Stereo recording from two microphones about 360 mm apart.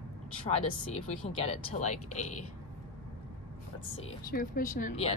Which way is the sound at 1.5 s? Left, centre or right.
Centre.